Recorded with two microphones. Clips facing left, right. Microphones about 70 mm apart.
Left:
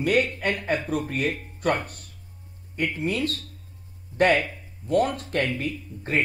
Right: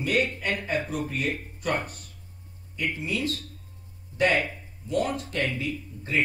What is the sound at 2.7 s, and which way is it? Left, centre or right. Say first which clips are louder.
Speech: left 3 dB; left.